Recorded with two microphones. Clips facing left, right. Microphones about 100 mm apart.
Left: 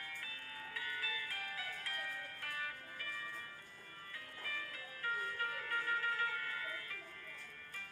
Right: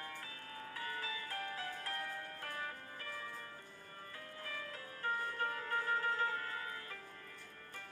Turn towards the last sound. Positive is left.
turn(degrees=-30)  # may be behind; listen again after turning